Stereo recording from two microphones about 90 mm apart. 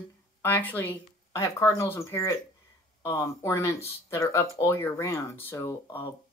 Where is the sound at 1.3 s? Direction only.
35° left (ahead or behind).